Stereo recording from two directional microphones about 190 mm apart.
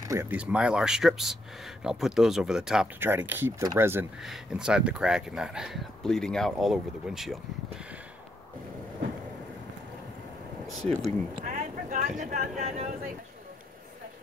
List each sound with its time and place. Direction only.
0.0 s speech: 15° right (ahead or behind)
10.7 s speech: centre (ahead or behind)
11.3 s a sound: 40° right (ahead or behind)